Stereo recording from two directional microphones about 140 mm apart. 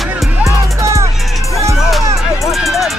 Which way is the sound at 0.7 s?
20° right (ahead or behind).